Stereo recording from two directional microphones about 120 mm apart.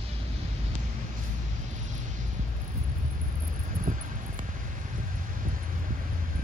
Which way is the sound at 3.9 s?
90° right.